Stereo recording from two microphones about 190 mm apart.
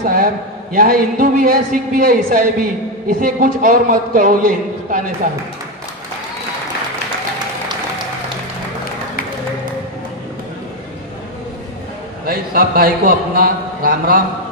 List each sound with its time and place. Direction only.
0.0 s a man's voice: 50° right (ahead or behind)
12.3 s a man's voice: 50° right (ahead or behind)